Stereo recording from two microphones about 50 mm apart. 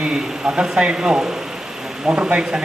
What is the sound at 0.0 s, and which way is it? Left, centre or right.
Speech, centre.